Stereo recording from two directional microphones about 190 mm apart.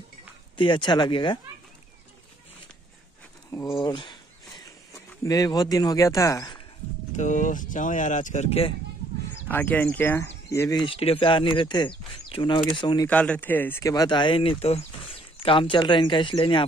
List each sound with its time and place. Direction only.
0.6 s speech: 25° left (ahead or behind)
3.7 s speech: 25° left (ahead or behind)
7.1 s speech: 40° left (ahead or behind)
9.5 s speech: 10° left (ahead or behind)
13.0 s speech: 10° left (ahead or behind); by 16.6 s 25° left (ahead or behind)